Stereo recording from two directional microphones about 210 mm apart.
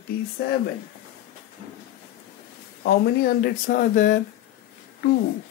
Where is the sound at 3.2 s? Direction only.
45° left (ahead or behind).